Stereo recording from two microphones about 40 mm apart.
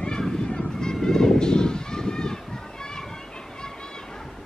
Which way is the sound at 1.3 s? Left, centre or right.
Centre.